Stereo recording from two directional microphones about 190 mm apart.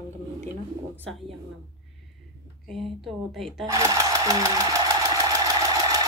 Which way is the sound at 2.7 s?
Centre (ahead or behind).